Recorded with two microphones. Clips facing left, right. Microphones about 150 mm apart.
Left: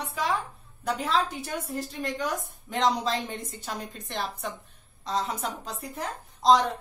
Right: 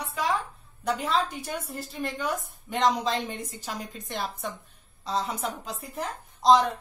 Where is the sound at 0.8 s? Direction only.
Centre (ahead or behind).